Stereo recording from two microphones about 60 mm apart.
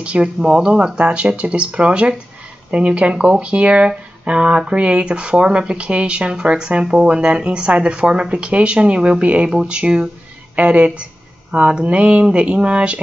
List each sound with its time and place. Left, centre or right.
0.0 s speech: centre